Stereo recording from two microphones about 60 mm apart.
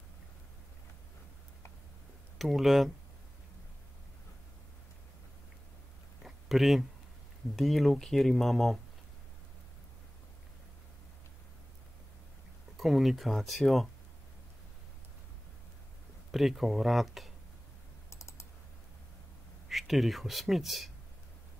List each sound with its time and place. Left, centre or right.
2.3 s speech: centre
6.2 s a sound: centre
7.5 s speech: centre
12.7 s speech: centre
16.3 s speech: centre
18.1 s typing: left
19.7 s speech: centre